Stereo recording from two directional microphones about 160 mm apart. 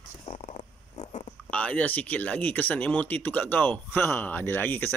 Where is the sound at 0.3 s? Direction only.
45° left (ahead or behind).